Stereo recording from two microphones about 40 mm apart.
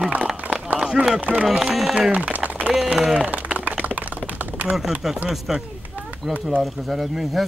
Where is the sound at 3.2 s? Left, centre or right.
Right.